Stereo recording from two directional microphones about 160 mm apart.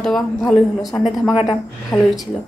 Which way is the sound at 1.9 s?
20° left (ahead or behind).